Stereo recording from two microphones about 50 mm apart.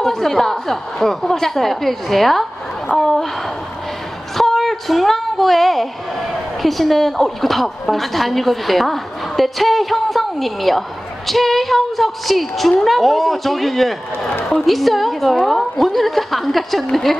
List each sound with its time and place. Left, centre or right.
0.0 s a woman's voice: centre
2.9 s a woman's voice: left
4.4 s a sound: centre
6.6 s a woman's voice: centre